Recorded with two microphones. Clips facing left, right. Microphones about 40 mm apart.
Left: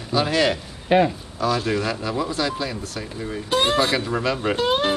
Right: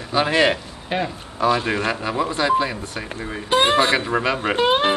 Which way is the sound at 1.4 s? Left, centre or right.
Right.